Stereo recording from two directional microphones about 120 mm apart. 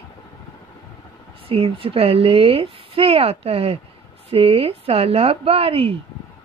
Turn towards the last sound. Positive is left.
turn(degrees=-55)  # may be behind; listen again after turning